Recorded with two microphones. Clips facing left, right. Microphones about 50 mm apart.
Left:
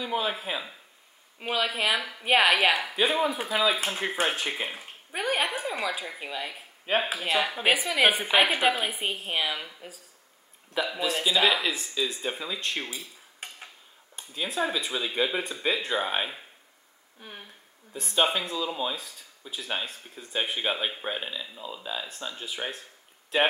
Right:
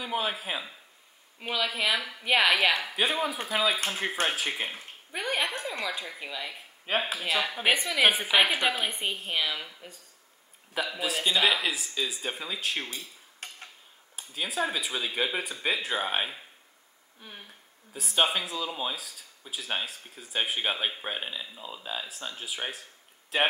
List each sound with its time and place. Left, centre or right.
0.0 s a woman's voice: centre
1.4 s speech: left
1.8 s a woman's voice: centre
17.2 s speech: centre
17.9 s a woman's voice: centre